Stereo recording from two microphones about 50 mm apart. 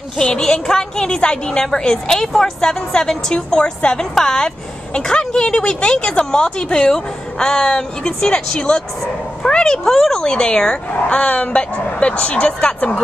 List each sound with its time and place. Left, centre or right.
0.2 s a woman's voice: centre